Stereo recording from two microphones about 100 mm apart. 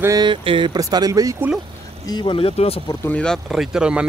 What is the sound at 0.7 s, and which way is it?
Speech, 40° right (ahead or behind).